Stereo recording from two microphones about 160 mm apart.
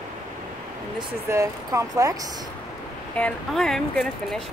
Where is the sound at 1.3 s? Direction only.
20° right (ahead or behind).